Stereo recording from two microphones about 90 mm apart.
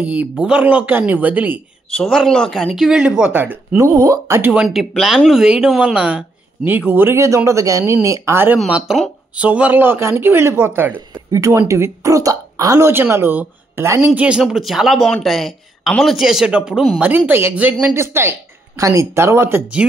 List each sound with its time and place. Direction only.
0.0 s speech: 15° right (ahead or behind)
2.0 s speech: 5° left (ahead or behind)
3.3 s speech: 20° right (ahead or behind)
3.8 s speech: 35° right (ahead or behind)
4.4 s speech: 20° right (ahead or behind)
4.6 s speech: centre (ahead or behind); by 8.5 s 25° right (ahead or behind)
8.6 s speech: 15° right (ahead or behind)
11.2 s speech: 40° right (ahead or behind); by 13.8 s 25° right (ahead or behind)
14.0 s speech: 10° right (ahead or behind)
17.3 s speech: 20° right (ahead or behind)